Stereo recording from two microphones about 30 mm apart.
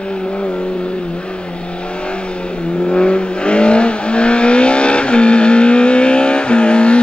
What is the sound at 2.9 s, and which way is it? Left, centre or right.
Vehicle, left.